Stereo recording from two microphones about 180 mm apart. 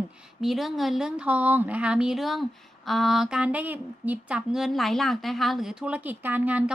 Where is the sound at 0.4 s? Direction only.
Centre (ahead or behind).